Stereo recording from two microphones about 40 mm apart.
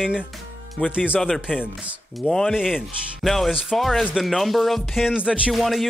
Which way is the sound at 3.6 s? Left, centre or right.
Centre.